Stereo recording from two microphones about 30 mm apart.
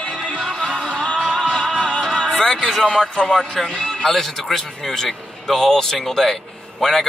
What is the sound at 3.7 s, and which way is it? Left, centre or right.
Music, centre.